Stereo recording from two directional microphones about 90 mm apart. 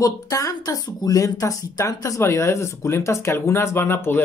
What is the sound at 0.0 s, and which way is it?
Speech, 40° left (ahead or behind).